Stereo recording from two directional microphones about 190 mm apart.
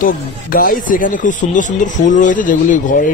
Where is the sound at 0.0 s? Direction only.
45° left (ahead or behind).